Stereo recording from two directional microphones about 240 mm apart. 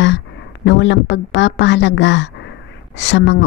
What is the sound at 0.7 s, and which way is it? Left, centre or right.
Speech, left.